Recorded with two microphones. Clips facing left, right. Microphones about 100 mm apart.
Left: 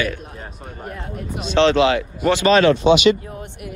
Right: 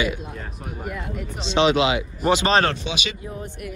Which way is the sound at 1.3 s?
25° right (ahead or behind).